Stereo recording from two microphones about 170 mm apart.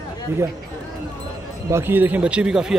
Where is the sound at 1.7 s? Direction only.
10° right (ahead or behind).